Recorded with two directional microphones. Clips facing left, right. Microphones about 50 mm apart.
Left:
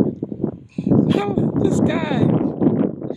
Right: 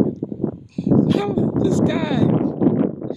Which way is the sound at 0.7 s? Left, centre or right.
Centre.